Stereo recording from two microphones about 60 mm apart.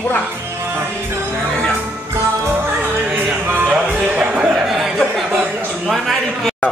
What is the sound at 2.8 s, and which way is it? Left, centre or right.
Music, right.